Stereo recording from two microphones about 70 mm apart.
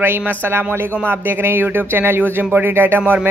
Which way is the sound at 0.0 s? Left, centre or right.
Right.